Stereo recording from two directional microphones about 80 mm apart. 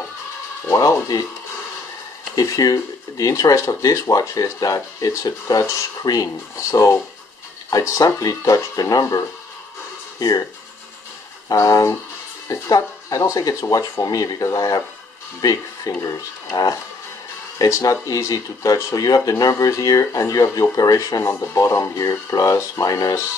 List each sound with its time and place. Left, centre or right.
1.1 s speech: left
2.3 s speech: left
6.7 s speech: left
11.4 s speech: left
15.9 s speech: left
17.6 s speech: left
21.2 s speech: left